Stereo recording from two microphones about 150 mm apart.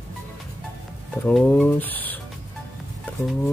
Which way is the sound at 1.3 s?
10° left (ahead or behind).